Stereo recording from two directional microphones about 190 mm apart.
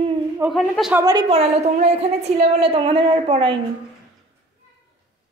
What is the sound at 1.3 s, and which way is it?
A woman's voice, 35° right (ahead or behind).